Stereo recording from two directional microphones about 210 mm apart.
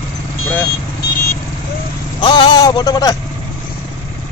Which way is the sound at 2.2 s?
20° left (ahead or behind).